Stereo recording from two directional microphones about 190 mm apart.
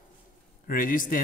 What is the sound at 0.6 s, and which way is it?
Speech, 45° left (ahead or behind).